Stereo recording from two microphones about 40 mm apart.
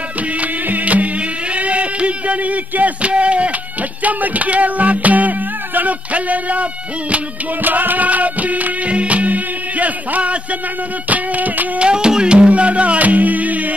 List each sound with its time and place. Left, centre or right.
0.4 s music: right
7.6 s music: right
11.8 s music: right